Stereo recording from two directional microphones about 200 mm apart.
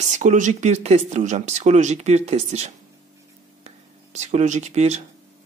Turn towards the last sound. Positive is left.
turn(degrees=-35)  # may be behind; listen again after turning